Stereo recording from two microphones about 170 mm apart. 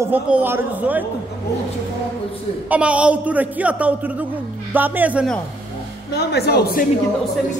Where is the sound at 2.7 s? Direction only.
5° right (ahead or behind).